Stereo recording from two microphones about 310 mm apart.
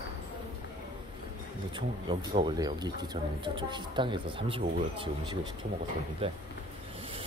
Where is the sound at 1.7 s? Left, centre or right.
Centre.